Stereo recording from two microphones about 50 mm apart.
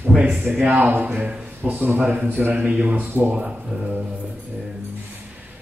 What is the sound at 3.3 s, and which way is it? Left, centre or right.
Speech, right.